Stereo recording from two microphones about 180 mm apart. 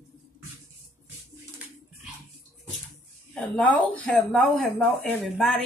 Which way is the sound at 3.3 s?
5° left (ahead or behind).